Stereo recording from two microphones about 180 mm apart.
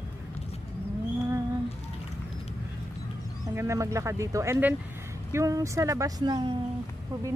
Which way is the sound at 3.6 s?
15° right (ahead or behind).